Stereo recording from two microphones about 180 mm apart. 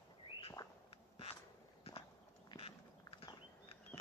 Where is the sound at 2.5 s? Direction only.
30° left (ahead or behind).